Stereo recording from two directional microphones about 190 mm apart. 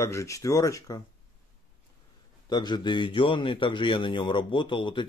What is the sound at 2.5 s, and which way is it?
A man's voice, 25° left (ahead or behind).